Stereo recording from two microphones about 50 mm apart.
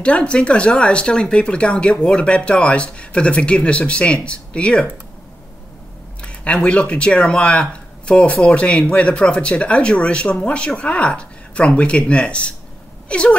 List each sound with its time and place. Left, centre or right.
0.0 s speech: left
6.2 s speech: left